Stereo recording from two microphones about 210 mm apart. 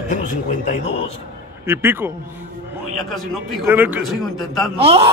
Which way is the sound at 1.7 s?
10° right (ahead or behind).